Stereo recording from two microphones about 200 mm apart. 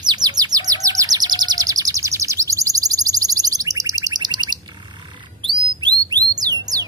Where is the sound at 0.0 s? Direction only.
20° right (ahead or behind).